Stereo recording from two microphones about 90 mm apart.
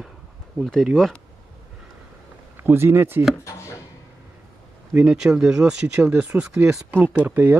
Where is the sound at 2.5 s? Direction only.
25° right (ahead or behind).